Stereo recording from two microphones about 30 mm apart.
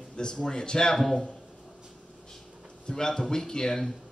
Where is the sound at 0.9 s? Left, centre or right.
Centre.